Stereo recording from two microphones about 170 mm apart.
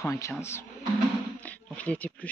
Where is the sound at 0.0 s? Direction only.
15° left (ahead or behind).